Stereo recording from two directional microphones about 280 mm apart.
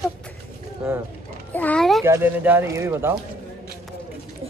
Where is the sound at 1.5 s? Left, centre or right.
Centre.